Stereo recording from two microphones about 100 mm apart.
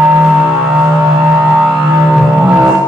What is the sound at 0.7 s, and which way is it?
Music, 5° right (ahead or behind).